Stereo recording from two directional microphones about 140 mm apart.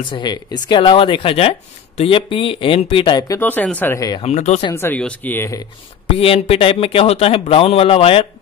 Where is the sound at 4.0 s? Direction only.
30° left (ahead or behind).